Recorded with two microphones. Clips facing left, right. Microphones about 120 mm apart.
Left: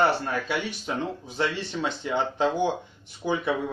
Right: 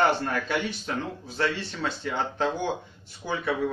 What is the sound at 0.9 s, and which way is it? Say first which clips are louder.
Speech: left 2 dB; 20° left (ahead or behind).